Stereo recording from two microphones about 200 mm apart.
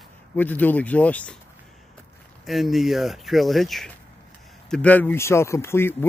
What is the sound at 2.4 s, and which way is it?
Speech, centre (ahead or behind).